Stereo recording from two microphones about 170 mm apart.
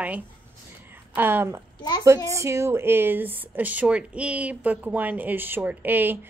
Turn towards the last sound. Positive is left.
turn(degrees=-10)  # may be behind; listen again after turning